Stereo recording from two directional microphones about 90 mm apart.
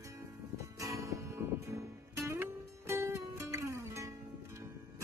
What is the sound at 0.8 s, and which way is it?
Music, 40° right (ahead or behind).